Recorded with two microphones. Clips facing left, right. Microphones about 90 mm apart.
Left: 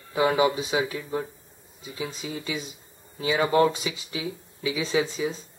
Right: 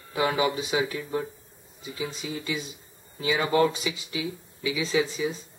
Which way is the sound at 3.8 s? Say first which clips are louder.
Even; 30° left (ahead or behind).